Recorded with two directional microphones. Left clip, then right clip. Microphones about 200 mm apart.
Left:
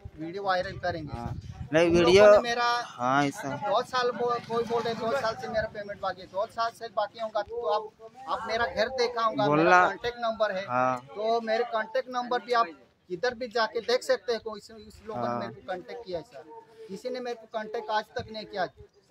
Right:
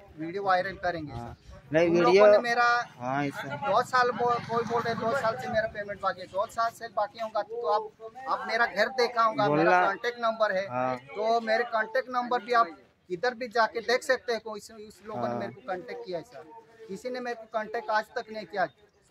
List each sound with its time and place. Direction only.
0.2 s speech: 5° left (ahead or behind)
1.2 s speech: 15° left (ahead or behind)
2.3 s speech: 5° left (ahead or behind)
3.0 s speech: 20° left (ahead or behind)
3.7 s speech: centre (ahead or behind)
11.1 s speech: centre (ahead or behind)